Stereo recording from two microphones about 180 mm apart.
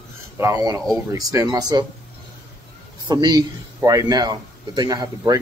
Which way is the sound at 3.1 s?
25° right (ahead or behind).